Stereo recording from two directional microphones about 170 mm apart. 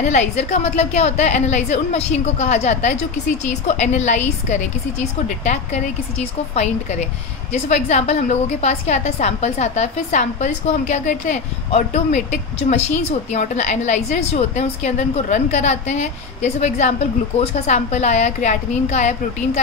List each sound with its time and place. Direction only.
0.0 s a woman's voice: 40° left (ahead or behind)